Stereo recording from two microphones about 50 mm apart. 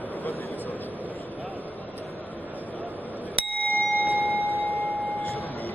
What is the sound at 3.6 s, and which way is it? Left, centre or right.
Bicycle bell, left.